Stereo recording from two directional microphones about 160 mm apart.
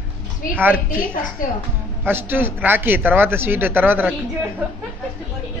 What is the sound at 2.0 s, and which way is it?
Speech, 15° right (ahead or behind).